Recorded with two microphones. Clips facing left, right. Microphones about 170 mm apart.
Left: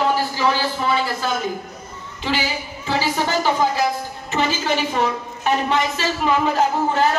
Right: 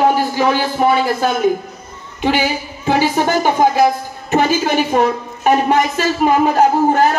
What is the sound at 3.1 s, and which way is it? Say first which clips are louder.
A woman's voice: right 5 dB; 55° right (ahead or behind).